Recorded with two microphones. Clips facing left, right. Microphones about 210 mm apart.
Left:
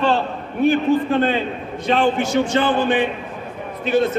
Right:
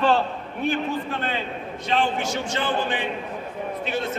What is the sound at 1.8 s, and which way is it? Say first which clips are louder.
A man's voice: left 6 dB; 55° left (ahead or behind).